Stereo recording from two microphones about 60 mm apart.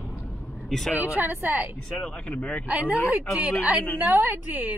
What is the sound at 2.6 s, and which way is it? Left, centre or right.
A woman's voice, right.